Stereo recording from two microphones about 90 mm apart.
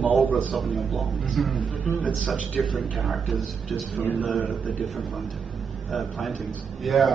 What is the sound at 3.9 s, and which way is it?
Speech, 15° left (ahead or behind).